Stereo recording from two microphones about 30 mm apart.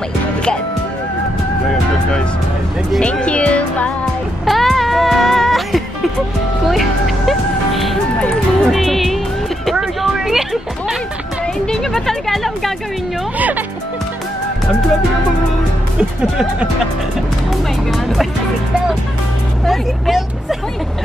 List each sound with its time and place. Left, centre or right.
3.0 s music: left
4.5 s music: centre
9.8 s a sound: centre
11.6 s music: centre
13.4 s music: right
16.0 s speech: right
17.5 s music: centre
19.6 s vehicle: centre